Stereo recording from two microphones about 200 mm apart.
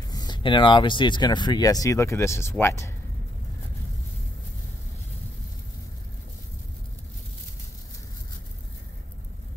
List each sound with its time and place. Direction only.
0.1 s speech: 20° left (ahead or behind)